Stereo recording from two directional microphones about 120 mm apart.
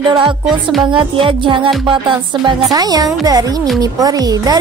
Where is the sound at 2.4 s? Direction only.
35° right (ahead or behind).